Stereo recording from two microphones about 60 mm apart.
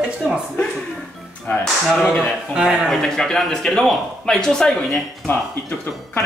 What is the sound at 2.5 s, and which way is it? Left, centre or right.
Speech, centre.